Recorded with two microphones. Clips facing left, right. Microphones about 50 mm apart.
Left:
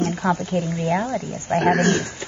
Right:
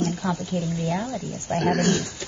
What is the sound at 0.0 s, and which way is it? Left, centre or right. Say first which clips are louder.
Speech: left 4 dB; left.